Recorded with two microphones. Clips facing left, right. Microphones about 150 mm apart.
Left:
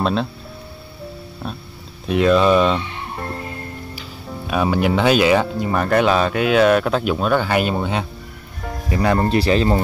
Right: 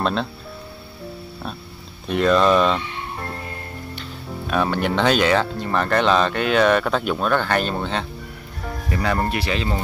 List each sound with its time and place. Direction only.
0.0 s speech: centre (ahead or behind)
2.0 s speech: centre (ahead or behind)
4.5 s speech: 10° left (ahead or behind)
9.3 s speech: 35° left (ahead or behind)